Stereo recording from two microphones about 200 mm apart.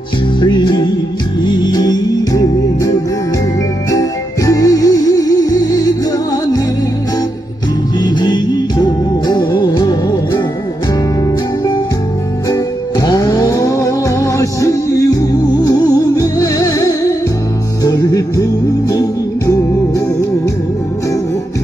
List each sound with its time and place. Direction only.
0.4 s music: 20° left (ahead or behind)
4.5 s music: 15° left (ahead or behind)
8.2 s music: 20° left (ahead or behind)
13.0 s music: 20° left (ahead or behind)